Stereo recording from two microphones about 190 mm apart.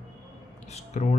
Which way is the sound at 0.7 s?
35° left (ahead or behind).